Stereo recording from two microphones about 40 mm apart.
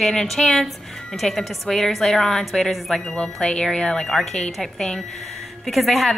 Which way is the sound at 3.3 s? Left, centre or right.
Left.